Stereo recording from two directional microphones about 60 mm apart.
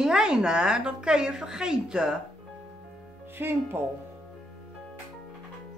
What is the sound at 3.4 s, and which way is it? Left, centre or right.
Speech, right.